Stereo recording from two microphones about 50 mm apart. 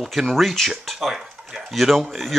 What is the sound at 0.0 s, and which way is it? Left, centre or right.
A man's voice, centre.